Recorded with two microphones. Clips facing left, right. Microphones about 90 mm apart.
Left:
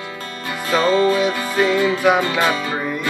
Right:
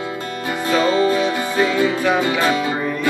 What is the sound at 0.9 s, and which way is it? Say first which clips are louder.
Music: left 1 dB; 20° right (ahead or behind).